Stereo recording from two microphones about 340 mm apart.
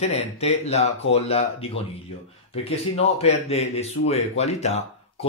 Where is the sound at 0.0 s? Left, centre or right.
Centre.